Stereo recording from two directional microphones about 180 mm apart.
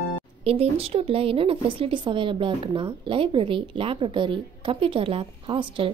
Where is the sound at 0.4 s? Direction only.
35° right (ahead or behind).